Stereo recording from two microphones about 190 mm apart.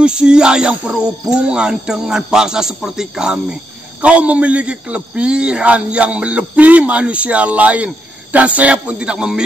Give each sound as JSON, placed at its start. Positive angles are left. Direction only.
{"t": 0.0, "sound": "music", "side_deg": -5}
{"t": 4.0, "sound": "a man's voice", "side_deg": -5}